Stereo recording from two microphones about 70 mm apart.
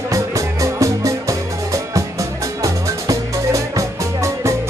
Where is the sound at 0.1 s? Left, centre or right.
Right.